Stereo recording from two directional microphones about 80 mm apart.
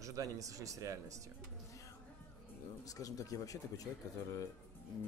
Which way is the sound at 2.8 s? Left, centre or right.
Left.